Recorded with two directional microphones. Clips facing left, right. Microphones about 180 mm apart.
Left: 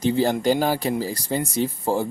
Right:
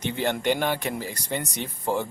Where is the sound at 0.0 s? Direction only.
35° left (ahead or behind).